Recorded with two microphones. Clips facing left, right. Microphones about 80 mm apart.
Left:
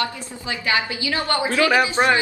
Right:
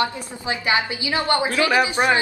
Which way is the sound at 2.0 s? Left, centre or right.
Left.